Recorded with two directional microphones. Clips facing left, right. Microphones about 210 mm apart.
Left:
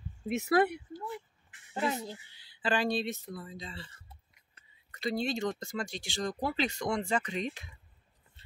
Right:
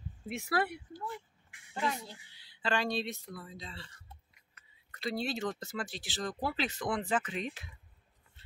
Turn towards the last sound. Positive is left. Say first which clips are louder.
# left 1 dB
turn(degrees=-5)  # may be behind; listen again after turning